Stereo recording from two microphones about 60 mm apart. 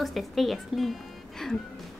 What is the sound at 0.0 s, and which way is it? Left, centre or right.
Speech, centre.